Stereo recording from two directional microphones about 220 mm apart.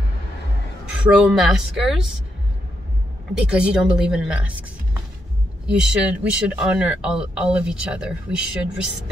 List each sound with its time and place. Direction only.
1.2 s speech: centre (ahead or behind)
3.4 s speech: 5° right (ahead or behind)
5.7 s speech: 5° right (ahead or behind)